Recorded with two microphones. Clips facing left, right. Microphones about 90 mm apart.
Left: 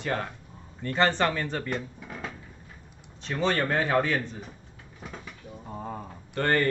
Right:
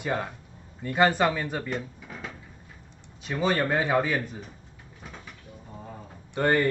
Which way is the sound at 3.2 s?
10° right (ahead or behind).